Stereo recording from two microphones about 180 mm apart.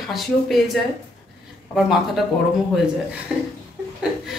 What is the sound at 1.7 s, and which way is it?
Speech, centre (ahead or behind).